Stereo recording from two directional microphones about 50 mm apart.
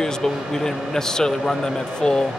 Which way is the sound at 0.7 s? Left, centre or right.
Centre.